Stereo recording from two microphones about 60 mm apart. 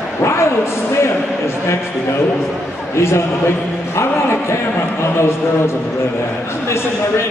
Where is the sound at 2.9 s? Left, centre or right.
Left.